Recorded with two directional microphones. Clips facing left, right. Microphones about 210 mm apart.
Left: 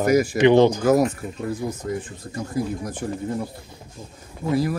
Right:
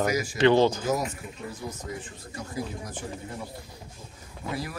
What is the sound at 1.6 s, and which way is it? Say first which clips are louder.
Speech: left 6 dB; 45° left (ahead or behind).